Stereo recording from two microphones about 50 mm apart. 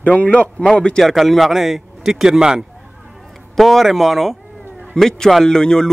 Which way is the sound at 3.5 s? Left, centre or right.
Centre.